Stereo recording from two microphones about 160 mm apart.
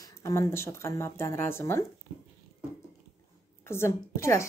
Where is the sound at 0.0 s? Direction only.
20° left (ahead or behind).